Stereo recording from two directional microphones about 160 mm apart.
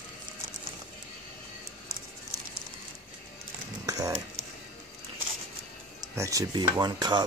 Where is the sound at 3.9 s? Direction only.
20° right (ahead or behind).